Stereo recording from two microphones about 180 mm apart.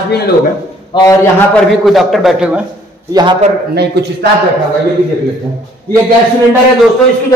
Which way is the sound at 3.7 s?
65° right (ahead or behind).